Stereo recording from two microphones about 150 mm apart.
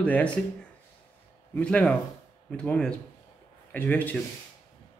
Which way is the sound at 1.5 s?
10° left (ahead or behind).